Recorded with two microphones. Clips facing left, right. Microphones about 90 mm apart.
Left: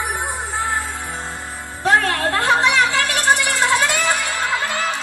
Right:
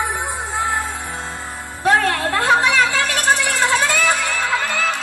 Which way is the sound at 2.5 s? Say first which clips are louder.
Even; 20° left (ahead or behind).